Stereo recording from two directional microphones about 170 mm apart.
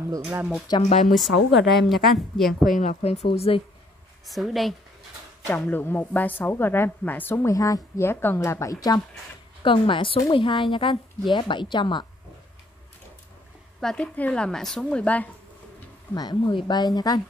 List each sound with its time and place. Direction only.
0.3 s speech: 10° right (ahead or behind)
1.0 s a woman's voice: centre (ahead or behind)
2.8 s speech: 40° left (ahead or behind)
4.3 s a woman's voice: centre (ahead or behind)
5.5 s a woman's voice: 10° left (ahead or behind); by 12.1 s 25° left (ahead or behind)
13.7 s a woman's voice: 5° left (ahead or behind)
16.2 s speech: 25° left (ahead or behind)